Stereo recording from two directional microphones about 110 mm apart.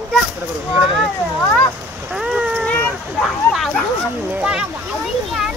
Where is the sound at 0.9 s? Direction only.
Centre (ahead or behind).